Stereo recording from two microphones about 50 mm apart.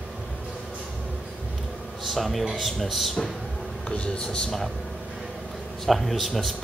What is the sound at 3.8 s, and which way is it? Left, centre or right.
Speech, left.